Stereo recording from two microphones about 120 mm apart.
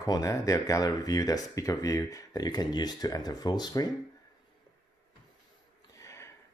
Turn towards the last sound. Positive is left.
turn(degrees=25)  # may be behind; listen again after turning